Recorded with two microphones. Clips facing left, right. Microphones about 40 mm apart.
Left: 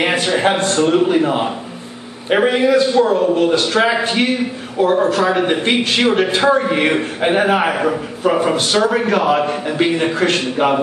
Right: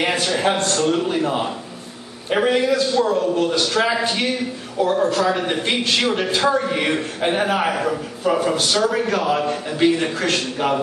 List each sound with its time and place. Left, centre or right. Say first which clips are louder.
0.0 s a man's voice: left 4 dB; left